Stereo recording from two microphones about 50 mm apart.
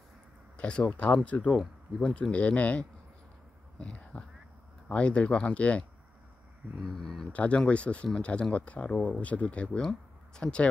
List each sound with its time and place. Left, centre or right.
0.6 s speech: left
3.7 s a sound: left
4.8 s speech: left
6.8 s speech: centre
7.3 s speech: left
9.2 s speech: left
9.8 s speech: centre